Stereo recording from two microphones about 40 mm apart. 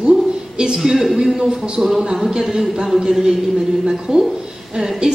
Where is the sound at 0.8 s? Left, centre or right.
Centre.